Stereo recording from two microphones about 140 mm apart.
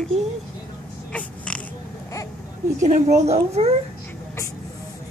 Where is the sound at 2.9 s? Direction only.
55° right (ahead or behind).